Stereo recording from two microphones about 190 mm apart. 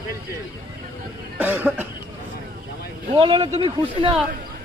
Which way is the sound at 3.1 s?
25° right (ahead or behind).